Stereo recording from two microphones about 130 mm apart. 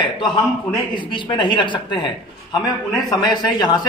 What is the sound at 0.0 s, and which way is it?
A man's voice, 35° left (ahead or behind).